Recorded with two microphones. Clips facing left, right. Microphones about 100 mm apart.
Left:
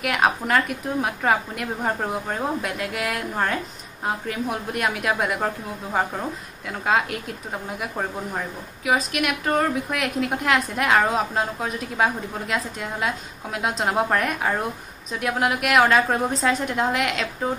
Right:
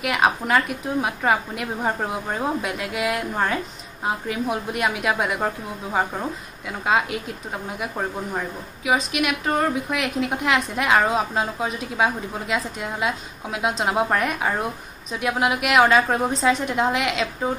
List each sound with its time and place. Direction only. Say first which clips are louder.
0.0 s a woman's voice: right 1 dB; 5° right (ahead or behind)